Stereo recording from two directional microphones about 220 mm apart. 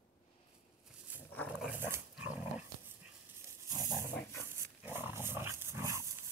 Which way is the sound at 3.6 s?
15° right (ahead or behind).